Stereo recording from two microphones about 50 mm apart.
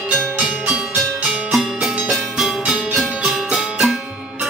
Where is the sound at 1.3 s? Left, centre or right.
Centre.